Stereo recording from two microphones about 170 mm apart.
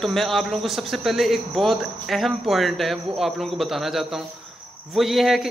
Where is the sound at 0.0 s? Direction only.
Centre (ahead or behind).